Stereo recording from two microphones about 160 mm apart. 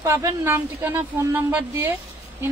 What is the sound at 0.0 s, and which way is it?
Speech, 15° right (ahead or behind).